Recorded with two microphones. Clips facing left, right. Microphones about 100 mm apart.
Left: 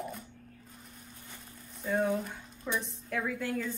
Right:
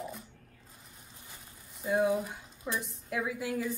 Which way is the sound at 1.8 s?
10° right (ahead or behind).